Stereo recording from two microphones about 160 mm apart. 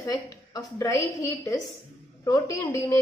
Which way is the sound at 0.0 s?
25° left (ahead or behind).